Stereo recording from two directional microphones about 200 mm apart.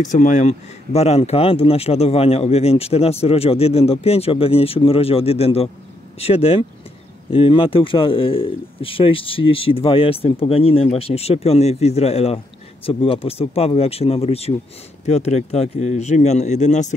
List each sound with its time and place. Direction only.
0.1 s speech: 40° left (ahead or behind)